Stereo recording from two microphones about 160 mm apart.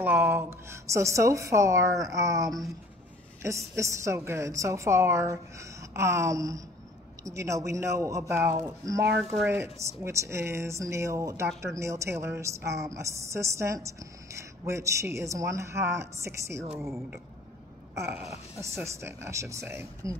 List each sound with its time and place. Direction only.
0.0 s speech: 15° right (ahead or behind)